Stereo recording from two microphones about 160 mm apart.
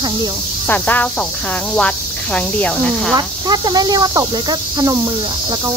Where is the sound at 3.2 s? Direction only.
25° right (ahead or behind).